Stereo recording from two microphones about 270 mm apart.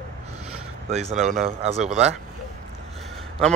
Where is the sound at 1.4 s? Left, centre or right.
Right.